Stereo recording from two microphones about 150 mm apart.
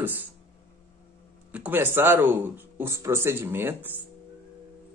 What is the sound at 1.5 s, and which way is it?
A man's voice, 10° right (ahead or behind).